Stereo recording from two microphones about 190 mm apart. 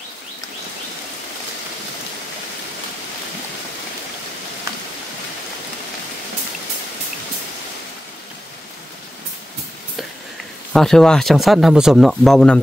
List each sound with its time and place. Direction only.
10.7 s speech: centre (ahead or behind)